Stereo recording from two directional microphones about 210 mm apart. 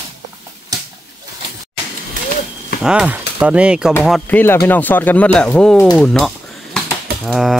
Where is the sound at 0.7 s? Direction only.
15° right (ahead or behind).